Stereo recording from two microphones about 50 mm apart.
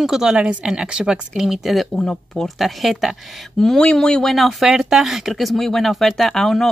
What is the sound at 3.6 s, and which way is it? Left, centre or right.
Speech, centre.